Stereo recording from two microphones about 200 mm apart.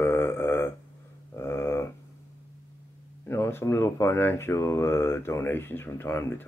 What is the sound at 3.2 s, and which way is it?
Speech, 10° left (ahead or behind).